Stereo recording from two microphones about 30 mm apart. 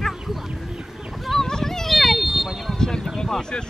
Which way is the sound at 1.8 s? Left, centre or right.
Centre.